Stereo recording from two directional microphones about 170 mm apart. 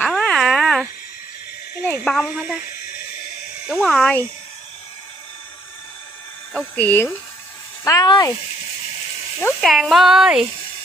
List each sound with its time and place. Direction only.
0.0 s a sound: 5° left (ahead or behind)
1.9 s a sound: 5° left (ahead or behind)
2.2 s speech: 5° right (ahead or behind)
3.6 s speech: centre (ahead or behind)
6.5 s speech: 10° left (ahead or behind)
9.6 s speech: centre (ahead or behind)